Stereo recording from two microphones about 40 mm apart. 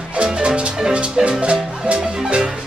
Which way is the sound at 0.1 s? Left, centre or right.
Right.